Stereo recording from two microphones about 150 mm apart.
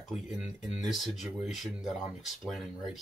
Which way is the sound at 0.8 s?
Centre (ahead or behind).